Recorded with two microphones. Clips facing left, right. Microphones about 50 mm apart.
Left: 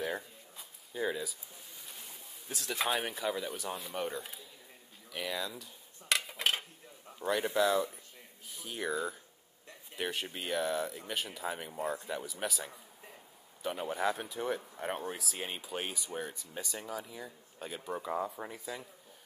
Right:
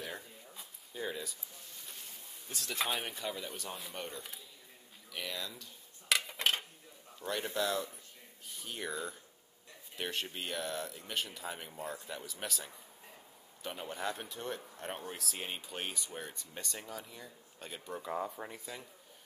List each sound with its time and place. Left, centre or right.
0.0 s a sound: centre
5.1 s dishes: centre
7.2 s speech: centre